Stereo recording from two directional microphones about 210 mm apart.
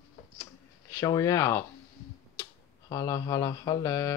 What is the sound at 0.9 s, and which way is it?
Speech, 15° left (ahead or behind).